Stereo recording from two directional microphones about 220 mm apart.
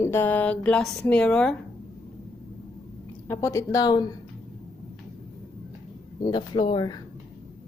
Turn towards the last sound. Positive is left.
turn(degrees=20)  # may be behind; listen again after turning